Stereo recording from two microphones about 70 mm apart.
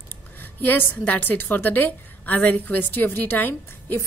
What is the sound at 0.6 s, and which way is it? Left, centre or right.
A woman's voice, left.